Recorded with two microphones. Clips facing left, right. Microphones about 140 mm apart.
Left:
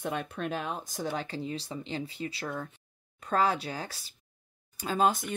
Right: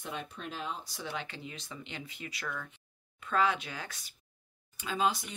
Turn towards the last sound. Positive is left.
turn(degrees=50)  # may be behind; listen again after turning